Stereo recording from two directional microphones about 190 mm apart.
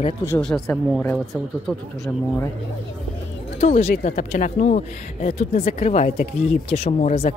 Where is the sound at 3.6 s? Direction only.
35° left (ahead or behind).